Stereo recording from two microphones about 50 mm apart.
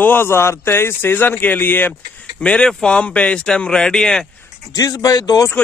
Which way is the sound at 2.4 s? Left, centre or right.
Centre.